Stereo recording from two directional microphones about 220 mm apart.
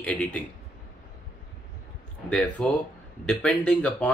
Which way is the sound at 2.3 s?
5° left (ahead or behind).